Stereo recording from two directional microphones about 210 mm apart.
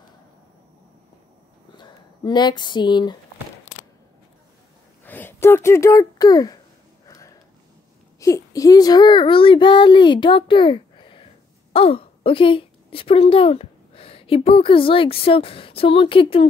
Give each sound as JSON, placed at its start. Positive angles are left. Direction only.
{"t": 1.8, "sound": "speech", "side_deg": 20}
{"t": 5.0, "sound": "speech", "side_deg": 10}
{"t": 8.2, "sound": "a child's voice", "side_deg": 15}